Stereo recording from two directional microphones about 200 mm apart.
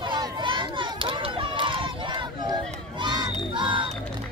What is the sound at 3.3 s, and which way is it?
Music, 25° right (ahead or behind).